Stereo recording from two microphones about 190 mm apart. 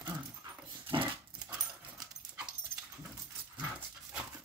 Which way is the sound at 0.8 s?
25° right (ahead or behind).